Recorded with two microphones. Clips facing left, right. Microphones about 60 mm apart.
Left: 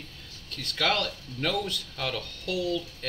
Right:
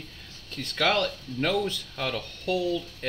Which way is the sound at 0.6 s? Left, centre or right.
Centre.